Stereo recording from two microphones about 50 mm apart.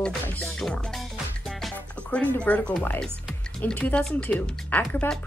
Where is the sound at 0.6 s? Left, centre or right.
Centre.